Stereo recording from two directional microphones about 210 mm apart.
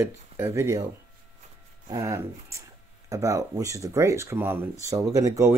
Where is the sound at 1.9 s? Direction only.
15° right (ahead or behind).